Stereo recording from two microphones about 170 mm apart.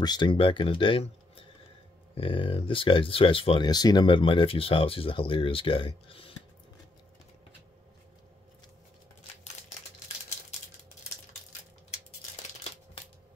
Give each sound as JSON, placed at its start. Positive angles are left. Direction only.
{"t": 0.0, "sound": "speech", "side_deg": 25}